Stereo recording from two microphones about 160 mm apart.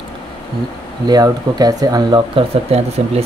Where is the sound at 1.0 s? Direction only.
25° right (ahead or behind).